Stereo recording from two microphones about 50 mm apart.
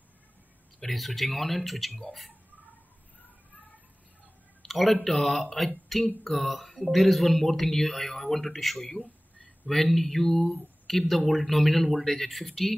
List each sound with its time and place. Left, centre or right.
0.9 s speech: centre
4.6 s speech: centre
9.0 s a sound: left
9.7 s speech: centre